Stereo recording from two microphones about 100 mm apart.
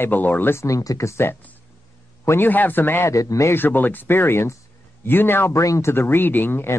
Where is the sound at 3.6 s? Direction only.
20° left (ahead or behind).